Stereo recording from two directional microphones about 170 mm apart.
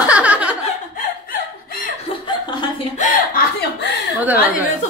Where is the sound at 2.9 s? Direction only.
45° left (ahead or behind).